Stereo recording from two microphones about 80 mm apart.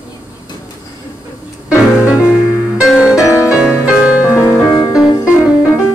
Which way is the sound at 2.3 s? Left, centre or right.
Centre.